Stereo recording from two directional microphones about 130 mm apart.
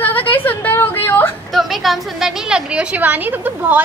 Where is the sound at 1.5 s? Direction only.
Centre (ahead or behind).